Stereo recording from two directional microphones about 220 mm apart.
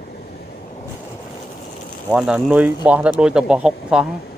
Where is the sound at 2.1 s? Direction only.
5° right (ahead or behind).